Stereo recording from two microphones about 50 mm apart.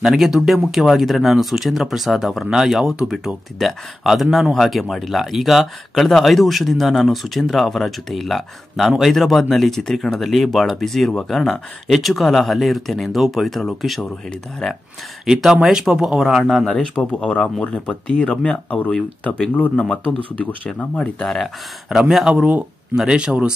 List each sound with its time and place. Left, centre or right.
0.0 s speech: centre
3.5 s speech: centre
15.2 s speech: centre
16.2 s speech: centre
16.9 s speech: left
20.4 s speech: left
20.9 s speech: left
21.9 s a man's voice: right
22.9 s a man's voice: centre